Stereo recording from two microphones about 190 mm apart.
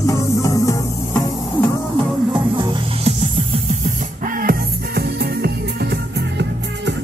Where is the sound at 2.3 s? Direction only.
25° right (ahead or behind).